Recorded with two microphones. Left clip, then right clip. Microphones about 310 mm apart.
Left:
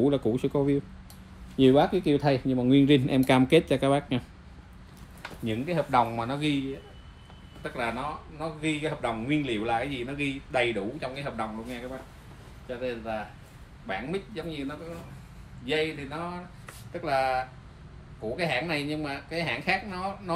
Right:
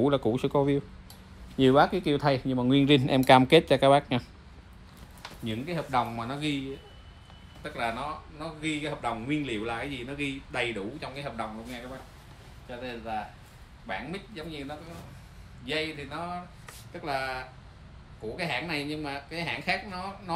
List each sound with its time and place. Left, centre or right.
0.0 s speech: right
1.9 s speech: centre
2.4 s speech: centre
5.4 s speech: centre
7.6 s speech: centre